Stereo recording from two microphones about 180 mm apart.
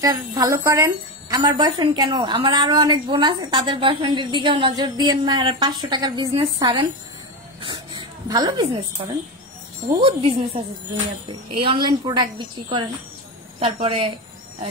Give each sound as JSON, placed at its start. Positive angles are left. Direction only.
{"t": 0.0, "sound": "speech", "side_deg": -20}
{"t": 8.3, "sound": "speech", "side_deg": -25}
{"t": 9.8, "sound": "a woman's voice", "side_deg": -30}